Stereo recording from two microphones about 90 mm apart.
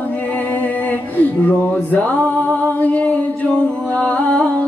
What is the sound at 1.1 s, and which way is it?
Music, 20° left (ahead or behind).